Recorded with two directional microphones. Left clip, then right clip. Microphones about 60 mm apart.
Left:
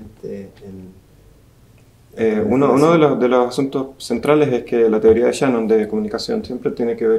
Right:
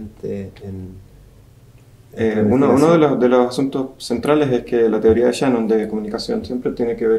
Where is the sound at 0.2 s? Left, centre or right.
Right.